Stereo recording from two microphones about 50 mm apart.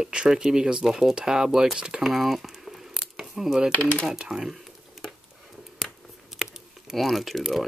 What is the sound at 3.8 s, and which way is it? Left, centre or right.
Speech, left.